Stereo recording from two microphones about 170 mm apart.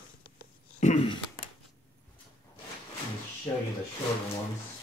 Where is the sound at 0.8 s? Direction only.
45° left (ahead or behind).